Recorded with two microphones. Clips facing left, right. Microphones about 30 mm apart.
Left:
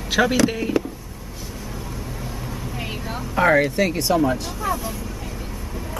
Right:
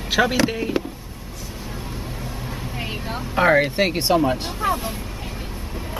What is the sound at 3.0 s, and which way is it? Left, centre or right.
Vehicle, centre.